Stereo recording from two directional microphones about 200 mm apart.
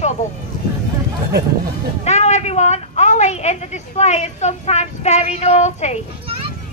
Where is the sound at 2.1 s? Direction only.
35° left (ahead or behind).